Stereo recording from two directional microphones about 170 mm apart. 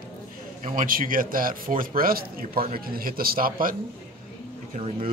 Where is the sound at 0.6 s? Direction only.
55° right (ahead or behind).